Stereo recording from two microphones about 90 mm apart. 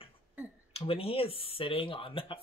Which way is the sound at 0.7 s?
90° left.